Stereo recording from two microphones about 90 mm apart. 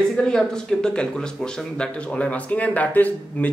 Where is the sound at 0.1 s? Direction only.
5° left (ahead or behind).